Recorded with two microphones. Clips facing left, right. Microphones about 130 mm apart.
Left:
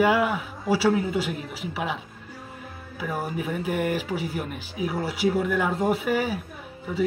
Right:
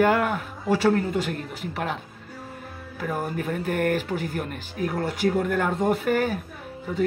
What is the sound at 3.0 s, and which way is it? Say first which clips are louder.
A man's voice: right 1 dB; 5° left (ahead or behind).